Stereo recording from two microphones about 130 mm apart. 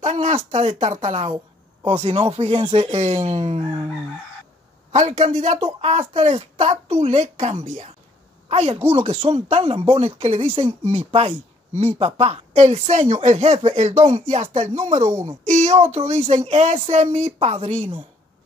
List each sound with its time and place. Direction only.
0.0 s a sound: 55° right (ahead or behind)
0.5 s speech: 55° right (ahead or behind)
4.9 s speech: 65° right (ahead or behind)
8.5 s a woman's voice: 55° right (ahead or behind)